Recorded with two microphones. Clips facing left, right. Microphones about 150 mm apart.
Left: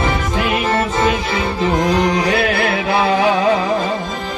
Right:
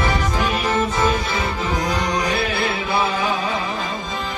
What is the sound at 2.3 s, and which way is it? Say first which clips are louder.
Music: left 5 dB; 65° left (ahead or behind).